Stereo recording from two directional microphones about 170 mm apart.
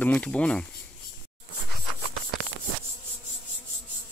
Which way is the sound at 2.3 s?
Centre (ahead or behind).